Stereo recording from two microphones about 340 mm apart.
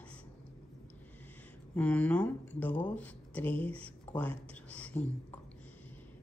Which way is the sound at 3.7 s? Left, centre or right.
Centre.